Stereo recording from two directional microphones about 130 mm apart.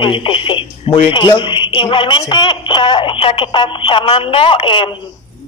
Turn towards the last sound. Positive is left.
turn(degrees=40)  # may be behind; listen again after turning